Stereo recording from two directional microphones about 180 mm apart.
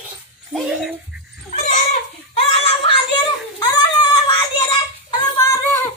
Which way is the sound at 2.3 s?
35° left (ahead or behind).